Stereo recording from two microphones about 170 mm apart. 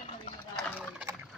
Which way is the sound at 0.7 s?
10° right (ahead or behind).